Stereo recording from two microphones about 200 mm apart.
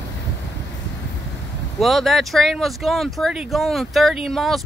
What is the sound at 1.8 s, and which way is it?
Speech, centre (ahead or behind).